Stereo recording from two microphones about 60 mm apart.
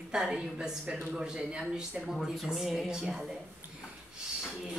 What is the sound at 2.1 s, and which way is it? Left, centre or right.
Speech, centre.